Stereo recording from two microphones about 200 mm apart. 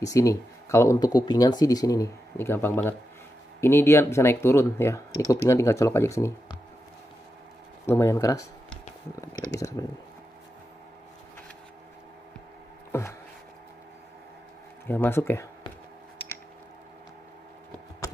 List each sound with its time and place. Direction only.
0.0 s speech: 15° left (ahead or behind)
7.8 s speech: 15° left (ahead or behind)
14.9 s speech: 10° left (ahead or behind)